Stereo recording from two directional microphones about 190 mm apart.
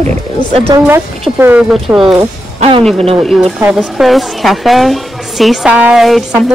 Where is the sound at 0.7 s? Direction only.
10° right (ahead or behind).